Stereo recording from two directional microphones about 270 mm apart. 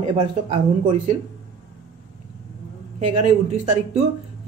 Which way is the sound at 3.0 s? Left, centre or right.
Right.